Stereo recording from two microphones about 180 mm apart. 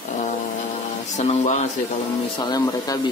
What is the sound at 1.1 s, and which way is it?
Speech, 40° left (ahead or behind).